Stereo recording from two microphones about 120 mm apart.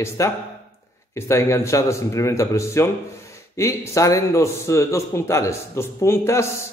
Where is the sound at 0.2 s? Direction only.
25° left (ahead or behind).